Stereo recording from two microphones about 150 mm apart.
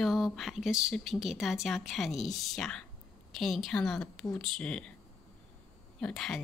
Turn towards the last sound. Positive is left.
turn(degrees=5)  # may be behind; listen again after turning